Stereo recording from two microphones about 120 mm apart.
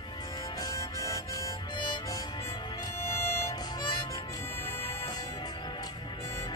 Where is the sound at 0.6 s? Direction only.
30° left (ahead or behind).